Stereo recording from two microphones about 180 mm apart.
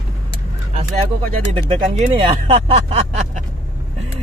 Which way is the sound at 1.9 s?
30° right (ahead or behind).